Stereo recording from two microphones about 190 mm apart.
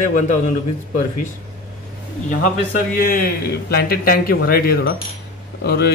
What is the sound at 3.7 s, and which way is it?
Speech, 55° left (ahead or behind).